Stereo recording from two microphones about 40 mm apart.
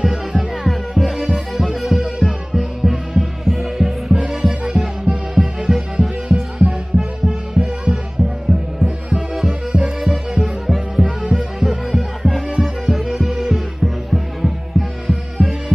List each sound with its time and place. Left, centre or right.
0.0 s music: centre